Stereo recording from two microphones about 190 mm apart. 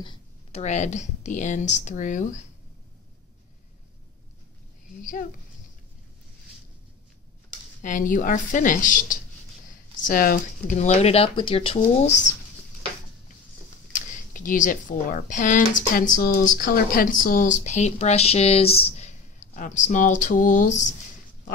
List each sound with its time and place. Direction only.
0.0 s speech: 30° left (ahead or behind)
7.8 s speech: 45° left (ahead or behind)
13.9 s speech: 45° left (ahead or behind)